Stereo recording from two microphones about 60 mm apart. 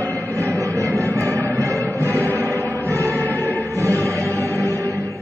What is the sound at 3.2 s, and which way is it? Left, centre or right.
Music, left.